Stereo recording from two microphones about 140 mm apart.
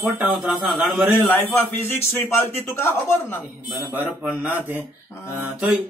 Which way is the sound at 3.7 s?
15° right (ahead or behind).